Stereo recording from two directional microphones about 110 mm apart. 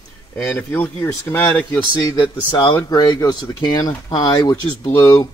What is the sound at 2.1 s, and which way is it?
Speech, 45° left (ahead or behind).